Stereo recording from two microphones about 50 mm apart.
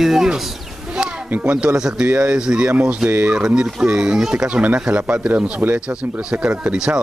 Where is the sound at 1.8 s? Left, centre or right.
Centre.